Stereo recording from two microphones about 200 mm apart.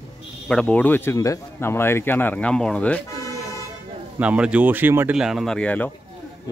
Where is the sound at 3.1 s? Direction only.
15° left (ahead or behind).